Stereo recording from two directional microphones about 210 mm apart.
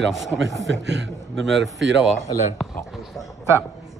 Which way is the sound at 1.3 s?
Centre (ahead or behind).